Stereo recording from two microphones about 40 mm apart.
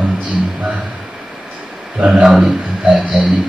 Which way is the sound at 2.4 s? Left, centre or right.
Centre.